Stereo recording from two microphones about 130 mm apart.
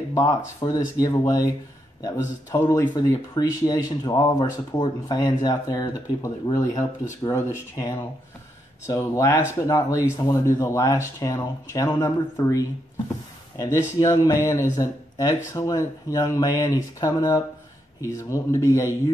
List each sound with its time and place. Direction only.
0.1 s speech: 25° left (ahead or behind)